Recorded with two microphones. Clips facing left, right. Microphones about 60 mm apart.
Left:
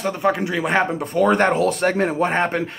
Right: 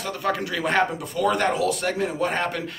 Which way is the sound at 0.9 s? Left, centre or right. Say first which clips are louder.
Left 6 dB; left.